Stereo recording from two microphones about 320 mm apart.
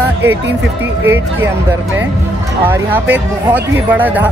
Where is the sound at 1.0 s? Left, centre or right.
Centre.